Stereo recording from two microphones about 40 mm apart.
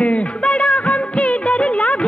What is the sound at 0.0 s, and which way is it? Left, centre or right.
Music of bollywood, left.